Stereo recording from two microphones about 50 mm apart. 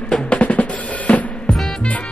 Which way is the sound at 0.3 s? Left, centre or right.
Left.